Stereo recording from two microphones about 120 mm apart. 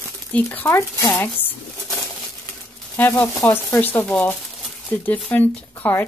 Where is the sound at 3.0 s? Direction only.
20° left (ahead or behind).